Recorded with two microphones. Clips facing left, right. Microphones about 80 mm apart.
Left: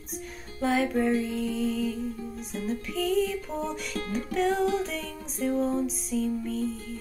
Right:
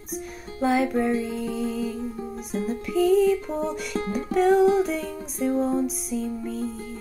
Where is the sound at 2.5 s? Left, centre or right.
Right.